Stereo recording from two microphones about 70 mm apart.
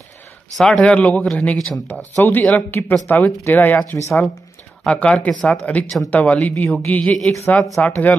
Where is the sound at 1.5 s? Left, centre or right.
Centre.